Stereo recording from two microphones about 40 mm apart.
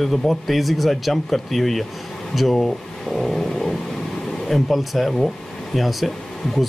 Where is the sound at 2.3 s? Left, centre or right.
Centre.